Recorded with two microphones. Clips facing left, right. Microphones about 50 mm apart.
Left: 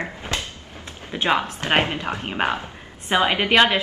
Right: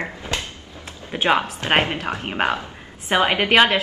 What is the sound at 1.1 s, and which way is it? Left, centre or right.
Speech, centre.